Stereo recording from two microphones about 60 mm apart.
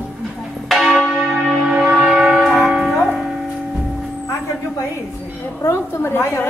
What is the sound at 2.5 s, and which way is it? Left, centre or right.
Music, centre.